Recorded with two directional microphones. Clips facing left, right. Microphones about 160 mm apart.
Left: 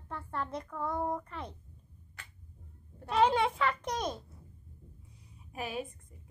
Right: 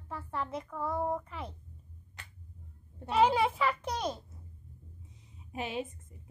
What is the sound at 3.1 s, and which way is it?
A child's voice, 5° right (ahead or behind).